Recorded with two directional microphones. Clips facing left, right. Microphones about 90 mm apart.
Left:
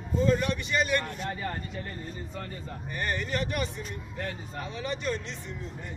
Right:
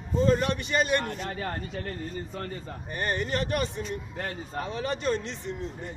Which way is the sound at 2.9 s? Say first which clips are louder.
Right 2 dB; 35° right (ahead or behind).